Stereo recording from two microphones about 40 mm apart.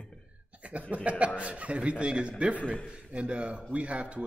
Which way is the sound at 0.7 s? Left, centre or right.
Right.